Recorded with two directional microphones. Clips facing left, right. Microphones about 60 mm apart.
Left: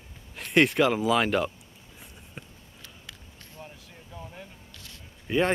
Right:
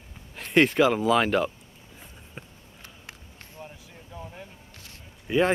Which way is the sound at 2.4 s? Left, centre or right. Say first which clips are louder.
Right 1 dB; centre.